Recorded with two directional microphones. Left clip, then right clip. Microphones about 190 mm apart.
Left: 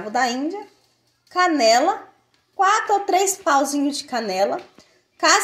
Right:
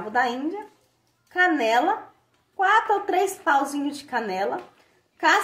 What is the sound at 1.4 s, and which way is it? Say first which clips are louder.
A woman's voice: left 4 dB; 30° left (ahead or behind).